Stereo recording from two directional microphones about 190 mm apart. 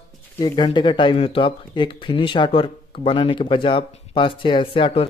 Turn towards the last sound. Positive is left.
turn(degrees=30)  # may be behind; listen again after turning